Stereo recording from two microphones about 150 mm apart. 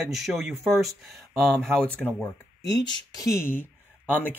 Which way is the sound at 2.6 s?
25° left (ahead or behind).